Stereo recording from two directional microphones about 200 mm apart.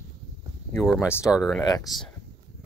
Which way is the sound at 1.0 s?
10° left (ahead or behind).